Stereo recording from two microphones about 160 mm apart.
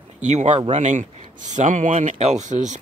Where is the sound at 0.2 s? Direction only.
45° right (ahead or behind).